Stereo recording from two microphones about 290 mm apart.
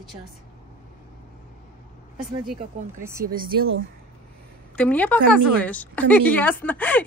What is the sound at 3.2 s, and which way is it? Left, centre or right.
Speech, right.